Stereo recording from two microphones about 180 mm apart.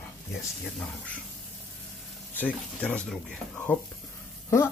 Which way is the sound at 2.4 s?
5° left (ahead or behind).